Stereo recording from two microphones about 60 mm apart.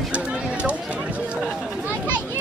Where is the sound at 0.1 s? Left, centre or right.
Right.